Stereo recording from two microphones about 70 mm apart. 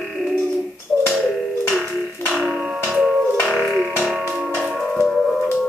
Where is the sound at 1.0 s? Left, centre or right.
Centre.